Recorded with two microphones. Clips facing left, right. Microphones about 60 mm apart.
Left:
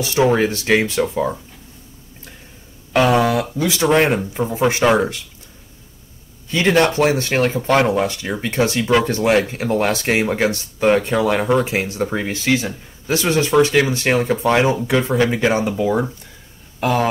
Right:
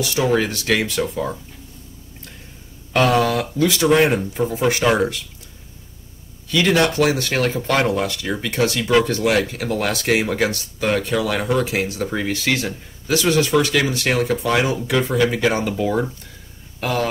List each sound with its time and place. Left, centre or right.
0.0 s speech: left
2.9 s speech: centre
3.8 s speech: left
6.5 s speech: left
13.0 s speech: left
16.8 s speech: centre